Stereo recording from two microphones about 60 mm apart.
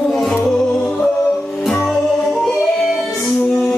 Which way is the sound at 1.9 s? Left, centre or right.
Centre.